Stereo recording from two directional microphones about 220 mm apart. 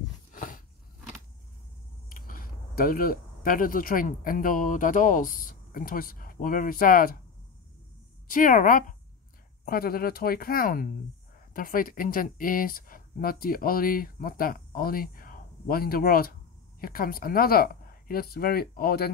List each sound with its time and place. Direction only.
0.3 s a sound: 35° left (ahead or behind)
2.0 s speech: 40° left (ahead or behind)
8.3 s speech: 40° left (ahead or behind)